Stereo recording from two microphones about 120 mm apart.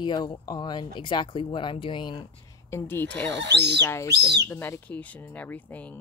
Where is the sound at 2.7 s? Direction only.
20° left (ahead or behind).